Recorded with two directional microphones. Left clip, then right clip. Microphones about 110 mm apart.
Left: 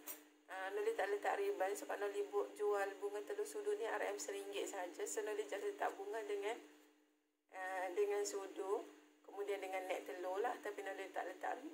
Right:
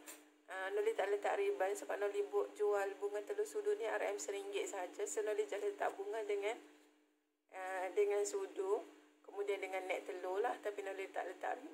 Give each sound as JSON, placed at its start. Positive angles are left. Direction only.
{"t": 0.5, "sound": "speech", "side_deg": -35}